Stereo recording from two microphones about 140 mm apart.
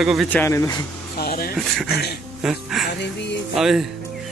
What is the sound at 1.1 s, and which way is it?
Speech, 90° left.